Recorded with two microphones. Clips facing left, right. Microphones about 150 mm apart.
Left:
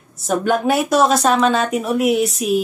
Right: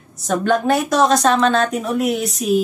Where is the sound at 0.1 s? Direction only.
5° left (ahead or behind).